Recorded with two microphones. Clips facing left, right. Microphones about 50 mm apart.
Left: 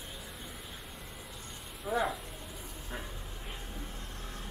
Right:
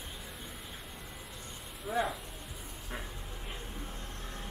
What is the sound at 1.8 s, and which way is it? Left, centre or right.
Speech, centre.